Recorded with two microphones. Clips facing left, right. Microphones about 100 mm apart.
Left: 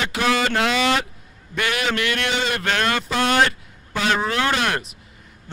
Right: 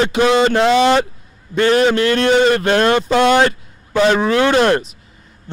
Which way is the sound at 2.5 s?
30° right (ahead or behind).